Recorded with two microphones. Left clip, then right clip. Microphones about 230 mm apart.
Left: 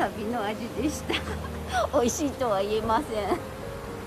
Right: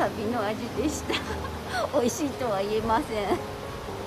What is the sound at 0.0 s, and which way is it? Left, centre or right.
Speech, centre.